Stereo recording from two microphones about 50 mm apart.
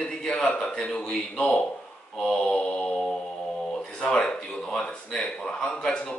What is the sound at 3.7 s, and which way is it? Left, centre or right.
Speech, centre.